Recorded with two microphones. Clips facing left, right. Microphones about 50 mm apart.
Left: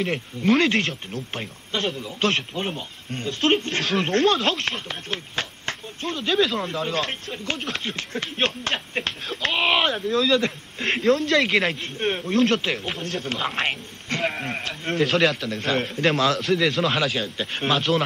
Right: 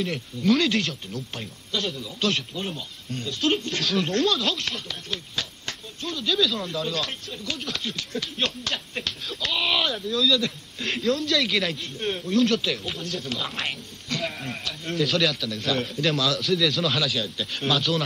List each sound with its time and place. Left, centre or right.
0.0 s speech: left
14.2 s speech: left